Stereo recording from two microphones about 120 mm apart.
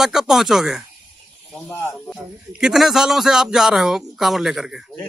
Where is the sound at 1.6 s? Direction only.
20° left (ahead or behind).